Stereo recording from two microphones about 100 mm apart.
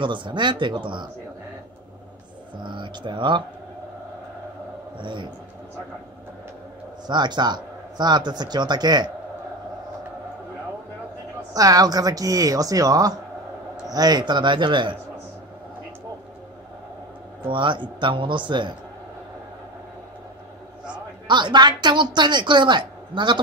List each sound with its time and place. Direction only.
0.0 s a woman's voice: 55° right (ahead or behind)
2.6 s a woman's voice: 55° right (ahead or behind)
4.9 s a man's voice: 55° right (ahead or behind)
7.1 s a woman's voice: 45° right (ahead or behind)
11.5 s a woman's voice: 40° right (ahead or behind); by 15.0 s 55° right (ahead or behind)
17.5 s speech: 55° right (ahead or behind)
21.3 s a woman's voice: 50° right (ahead or behind)